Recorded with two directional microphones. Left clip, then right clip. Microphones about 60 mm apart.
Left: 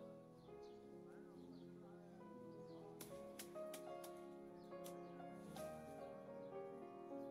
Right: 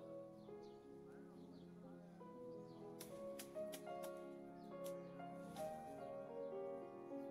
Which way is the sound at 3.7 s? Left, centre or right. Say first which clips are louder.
Right 3 dB; left.